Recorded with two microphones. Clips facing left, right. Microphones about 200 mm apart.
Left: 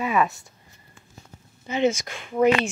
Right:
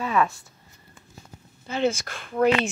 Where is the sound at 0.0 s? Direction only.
10° left (ahead or behind).